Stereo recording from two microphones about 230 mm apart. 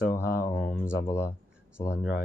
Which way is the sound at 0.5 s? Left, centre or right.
Left.